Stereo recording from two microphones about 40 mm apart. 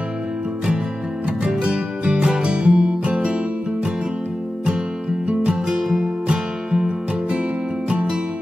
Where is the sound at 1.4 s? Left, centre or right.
Right.